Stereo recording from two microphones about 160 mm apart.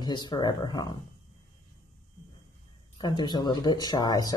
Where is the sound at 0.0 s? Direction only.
25° left (ahead or behind).